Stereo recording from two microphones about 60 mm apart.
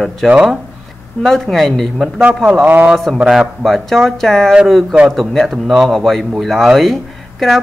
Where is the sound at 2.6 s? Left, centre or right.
Right.